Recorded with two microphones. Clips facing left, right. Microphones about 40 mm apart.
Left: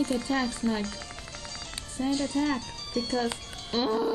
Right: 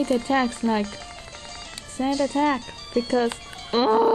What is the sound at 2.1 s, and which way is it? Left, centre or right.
Speech, right.